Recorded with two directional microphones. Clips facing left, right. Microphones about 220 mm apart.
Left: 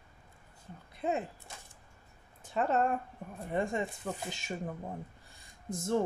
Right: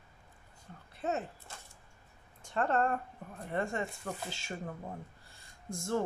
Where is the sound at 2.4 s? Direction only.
5° left (ahead or behind).